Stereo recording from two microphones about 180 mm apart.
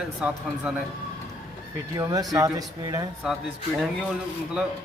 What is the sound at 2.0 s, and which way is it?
Speech, 20° right (ahead or behind).